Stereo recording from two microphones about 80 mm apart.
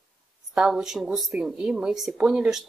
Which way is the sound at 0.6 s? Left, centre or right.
Centre.